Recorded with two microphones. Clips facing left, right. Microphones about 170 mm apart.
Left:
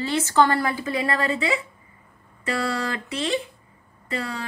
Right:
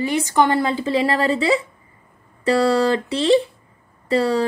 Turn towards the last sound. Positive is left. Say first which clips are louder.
# right 12 dB
turn(degrees=-35)  # may be behind; listen again after turning